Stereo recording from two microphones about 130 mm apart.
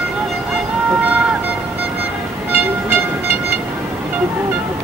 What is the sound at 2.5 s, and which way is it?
Train, 15° right (ahead or behind).